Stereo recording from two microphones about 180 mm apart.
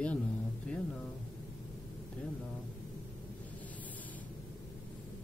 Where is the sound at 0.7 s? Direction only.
5° left (ahead or behind).